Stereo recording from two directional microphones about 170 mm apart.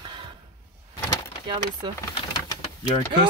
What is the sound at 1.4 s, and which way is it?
Speech, 30° right (ahead or behind).